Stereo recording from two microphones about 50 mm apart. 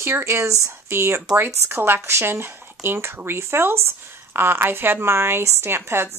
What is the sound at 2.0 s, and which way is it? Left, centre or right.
A woman's voice, right.